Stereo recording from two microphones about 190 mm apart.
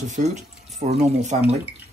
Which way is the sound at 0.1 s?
40° right (ahead or behind).